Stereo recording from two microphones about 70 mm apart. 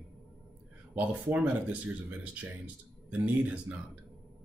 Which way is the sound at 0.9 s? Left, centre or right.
Right.